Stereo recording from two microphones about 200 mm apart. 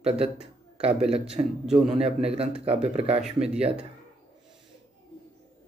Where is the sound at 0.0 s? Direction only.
30° right (ahead or behind).